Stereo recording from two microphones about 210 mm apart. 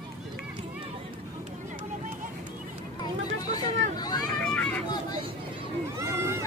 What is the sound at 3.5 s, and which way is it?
Chatter, 20° left (ahead or behind).